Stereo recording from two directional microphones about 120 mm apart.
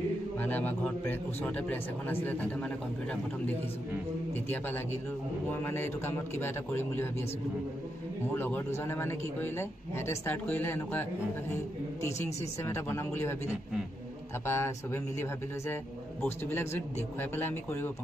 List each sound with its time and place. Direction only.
0.4 s a man's voice: 15° left (ahead or behind)
4.3 s a man's voice: 15° left (ahead or behind)
8.4 s a man's voice: 15° left (ahead or behind)
16.3 s a man's voice: 20° left (ahead or behind)